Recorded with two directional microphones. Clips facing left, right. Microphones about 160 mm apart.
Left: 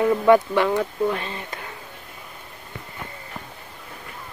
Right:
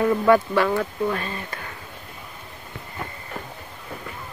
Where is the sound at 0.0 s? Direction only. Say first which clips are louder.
Left 1 dB; 15° left (ahead or behind).